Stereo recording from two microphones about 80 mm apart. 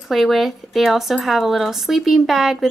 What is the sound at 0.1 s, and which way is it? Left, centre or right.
Speech, centre.